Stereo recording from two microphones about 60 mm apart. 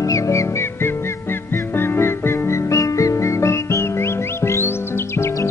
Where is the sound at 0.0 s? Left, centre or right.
Left.